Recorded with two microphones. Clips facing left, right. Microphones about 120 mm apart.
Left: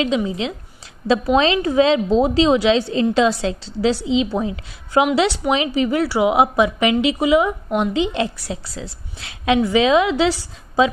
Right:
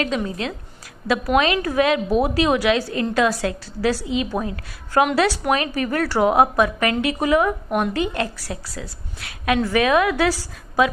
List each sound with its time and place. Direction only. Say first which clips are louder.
1.0 s a woman's voice: left 3 dB; 25° left (ahead or behind)